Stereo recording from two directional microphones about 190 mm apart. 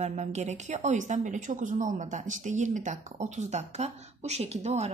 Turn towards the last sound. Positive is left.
turn(degrees=-35)  # may be behind; listen again after turning